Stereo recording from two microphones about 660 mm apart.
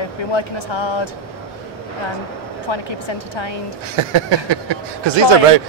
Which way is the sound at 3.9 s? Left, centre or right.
Right.